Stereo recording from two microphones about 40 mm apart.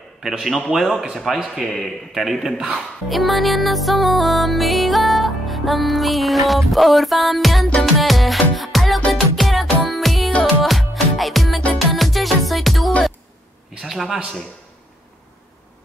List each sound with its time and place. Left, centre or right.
0.2 s a man's voice: centre
0.7 s music: centre
1.5 s a man's voice: centre
2.1 s music: centre
2.5 s a man's voice: centre
3.1 s music: centre